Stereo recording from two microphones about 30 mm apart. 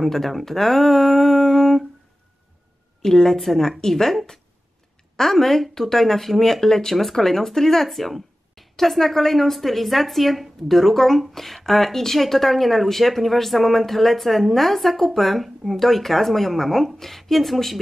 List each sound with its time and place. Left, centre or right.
0.0 s speech: centre
3.0 s a woman's voice: centre